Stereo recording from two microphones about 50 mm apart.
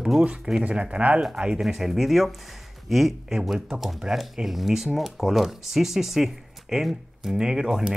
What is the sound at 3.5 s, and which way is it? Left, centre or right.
Speech, centre.